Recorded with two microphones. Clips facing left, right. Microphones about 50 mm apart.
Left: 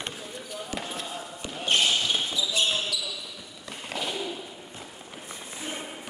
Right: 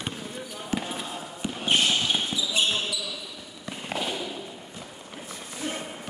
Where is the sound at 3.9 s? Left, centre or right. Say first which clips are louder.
Right 2 dB; centre.